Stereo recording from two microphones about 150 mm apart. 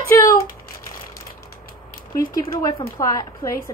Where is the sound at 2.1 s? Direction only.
25° left (ahead or behind).